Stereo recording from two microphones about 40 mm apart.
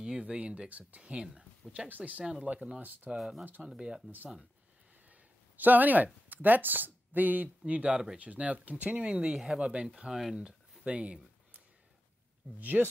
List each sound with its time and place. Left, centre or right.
0.0 s speech: right
0.7 s speech: right
1.9 s speech: right
2.3 s speech: right
2.8 s speech: right
3.2 s speech: centre
5.1 s a sound: right
6.2 s speech: right
7.6 s speech: right
8.9 s speech: right
10.0 s speech: centre
10.9 s a sound: right
12.5 s speech: right